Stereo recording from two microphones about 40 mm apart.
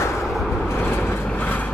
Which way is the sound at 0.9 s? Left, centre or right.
Left.